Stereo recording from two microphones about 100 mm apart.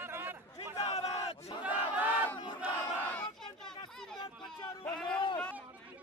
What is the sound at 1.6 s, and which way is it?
Battle cry, 15° right (ahead or behind).